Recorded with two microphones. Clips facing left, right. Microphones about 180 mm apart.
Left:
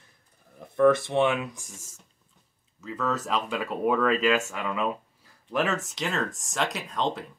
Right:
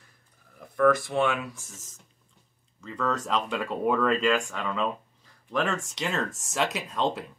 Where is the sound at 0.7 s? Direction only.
25° left (ahead or behind).